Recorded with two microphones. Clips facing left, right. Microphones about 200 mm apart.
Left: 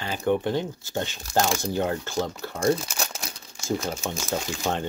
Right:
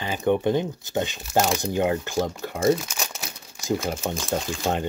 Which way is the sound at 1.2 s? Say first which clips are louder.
Right 1 dB; 5° right (ahead or behind).